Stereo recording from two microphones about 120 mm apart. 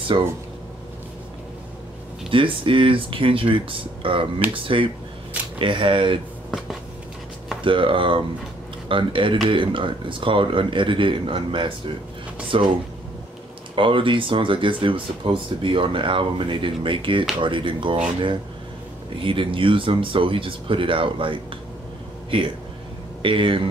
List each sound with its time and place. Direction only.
0.1 s speech: 40° right (ahead or behind)
2.2 s speech: 45° right (ahead or behind)
7.6 s speech: 45° right (ahead or behind)
13.7 s speech: 45° right (ahead or behind)
19.2 s speech: 45° right (ahead or behind)
23.2 s speech: 45° right (ahead or behind)